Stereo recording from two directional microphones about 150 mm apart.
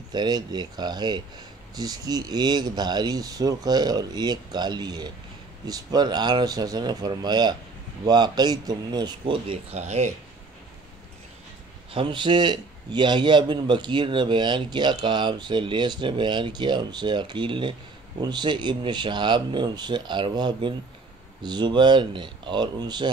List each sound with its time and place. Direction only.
0.1 s a man's voice: 30° right (ahead or behind); by 10.1 s 50° right (ahead or behind)
11.9 s a man's voice: 35° right (ahead or behind)